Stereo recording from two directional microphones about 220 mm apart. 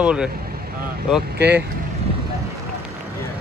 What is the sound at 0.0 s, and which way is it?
Speech, 5° right (ahead or behind).